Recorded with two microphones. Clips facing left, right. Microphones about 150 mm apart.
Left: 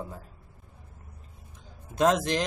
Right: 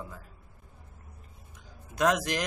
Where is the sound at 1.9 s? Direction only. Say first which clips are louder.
Left 3 dB; 25° left (ahead or behind).